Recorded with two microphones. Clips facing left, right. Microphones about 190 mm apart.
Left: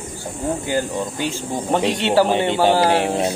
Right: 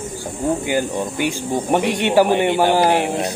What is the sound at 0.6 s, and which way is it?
Speech, 15° right (ahead or behind).